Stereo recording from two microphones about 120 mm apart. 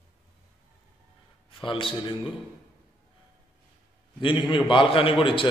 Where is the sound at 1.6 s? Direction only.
45° left (ahead or behind).